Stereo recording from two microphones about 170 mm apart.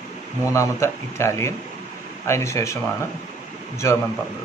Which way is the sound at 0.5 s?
15° left (ahead or behind).